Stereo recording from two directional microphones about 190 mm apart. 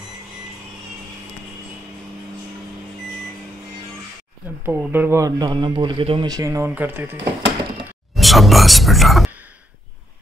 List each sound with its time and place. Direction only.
4.6 s speech: 10° right (ahead or behind); by 6.3 s 30° right (ahead or behind)
6.3 s speech: 15° right (ahead or behind)
8.1 s whispering: centre (ahead or behind)